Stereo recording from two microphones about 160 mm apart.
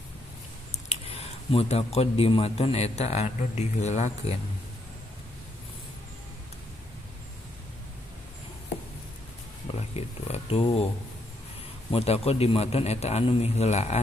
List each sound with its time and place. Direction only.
0.8 s speech: 40° left (ahead or behind)
9.8 s speech: 40° left (ahead or behind)
11.9 s speech: 40° left (ahead or behind)